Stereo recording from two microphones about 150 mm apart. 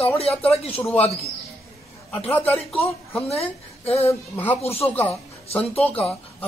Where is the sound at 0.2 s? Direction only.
40° left (ahead or behind).